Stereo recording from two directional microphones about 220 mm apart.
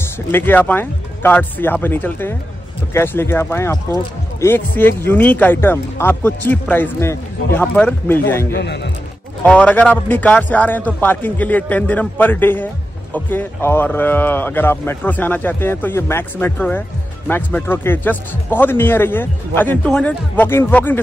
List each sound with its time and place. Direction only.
0.3 s speech: 10° left (ahead or behind)
8.5 s a man's voice: 50° left (ahead or behind)
9.4 s speech: 5° left (ahead or behind)